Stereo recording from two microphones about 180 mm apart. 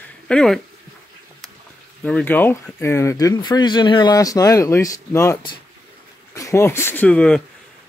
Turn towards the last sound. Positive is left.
turn(degrees=5)  # may be behind; listen again after turning